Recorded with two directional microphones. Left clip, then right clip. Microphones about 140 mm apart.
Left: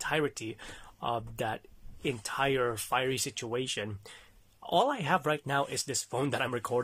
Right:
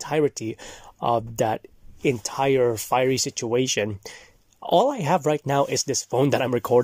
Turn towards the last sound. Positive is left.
turn(degrees=-45)  # may be behind; listen again after turning